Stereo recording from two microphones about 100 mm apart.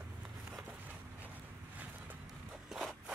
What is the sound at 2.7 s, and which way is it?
Zipper, centre (ahead or behind).